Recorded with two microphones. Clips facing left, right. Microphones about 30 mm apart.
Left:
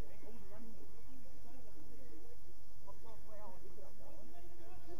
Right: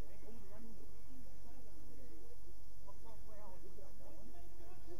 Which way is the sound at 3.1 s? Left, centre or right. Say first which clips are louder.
Left 3 dB; centre.